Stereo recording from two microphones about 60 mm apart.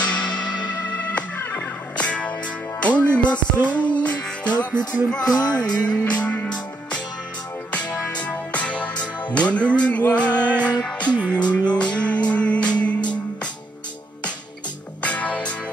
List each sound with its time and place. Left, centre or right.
0.0 s music: centre
2.0 s music: left
15.0 s music: left